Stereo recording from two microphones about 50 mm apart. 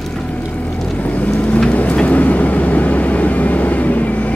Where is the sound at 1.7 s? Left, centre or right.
Left.